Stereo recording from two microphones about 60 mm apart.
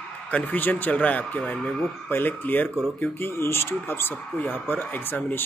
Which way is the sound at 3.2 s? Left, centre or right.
Left.